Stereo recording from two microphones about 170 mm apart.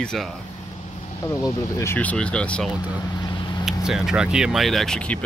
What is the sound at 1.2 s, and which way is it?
Speech, 15° left (ahead or behind).